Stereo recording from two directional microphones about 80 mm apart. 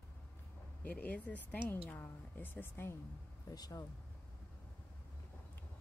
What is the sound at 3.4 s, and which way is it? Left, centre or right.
Speech, left.